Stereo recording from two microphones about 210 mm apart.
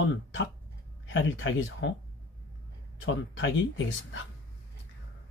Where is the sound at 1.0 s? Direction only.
60° left (ahead or behind).